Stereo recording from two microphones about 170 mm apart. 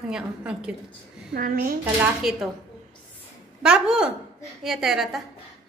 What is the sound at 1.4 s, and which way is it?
Speech, 55° right (ahead or behind).